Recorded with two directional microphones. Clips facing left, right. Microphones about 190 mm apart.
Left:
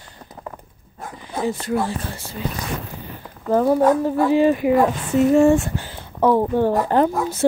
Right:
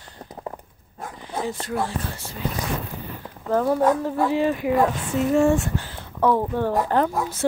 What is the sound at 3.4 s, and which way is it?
Speech, 10° left (ahead or behind).